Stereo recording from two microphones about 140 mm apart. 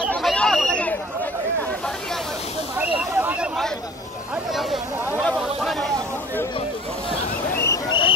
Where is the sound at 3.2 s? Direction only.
10° right (ahead or behind).